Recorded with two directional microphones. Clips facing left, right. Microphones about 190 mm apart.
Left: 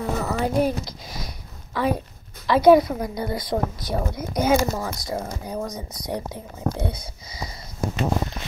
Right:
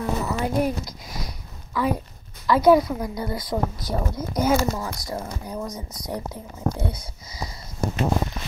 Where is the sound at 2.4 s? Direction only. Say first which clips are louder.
Left 2 dB; 25° left (ahead or behind).